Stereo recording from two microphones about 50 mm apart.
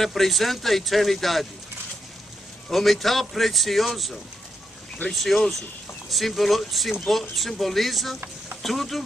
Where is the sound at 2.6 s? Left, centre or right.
Centre.